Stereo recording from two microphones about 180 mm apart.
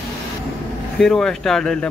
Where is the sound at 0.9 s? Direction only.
5° left (ahead or behind).